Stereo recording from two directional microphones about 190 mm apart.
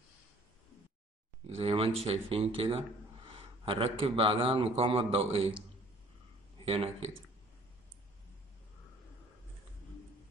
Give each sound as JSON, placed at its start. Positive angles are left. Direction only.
{"t": 1.5, "sound": "a man's voice", "side_deg": -30}
{"t": 6.6, "sound": "speech", "side_deg": -30}